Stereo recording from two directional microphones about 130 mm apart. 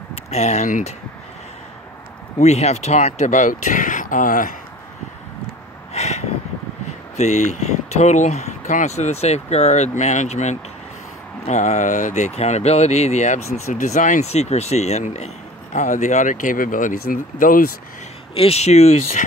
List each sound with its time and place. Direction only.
0.1 s speech: 60° left (ahead or behind); by 0.9 s 80° left
2.3 s speech: 55° left (ahead or behind); by 4.5 s 90° left
5.9 s a sound: 60° left (ahead or behind)
7.2 s speech: 65° left (ahead or behind); by 17.6 s 90° left
18.3 s speech: 50° left (ahead or behind)